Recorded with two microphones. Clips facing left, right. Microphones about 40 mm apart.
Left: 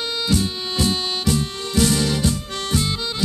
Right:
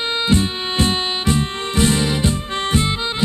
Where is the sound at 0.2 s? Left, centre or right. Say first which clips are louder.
Right 3 dB; right.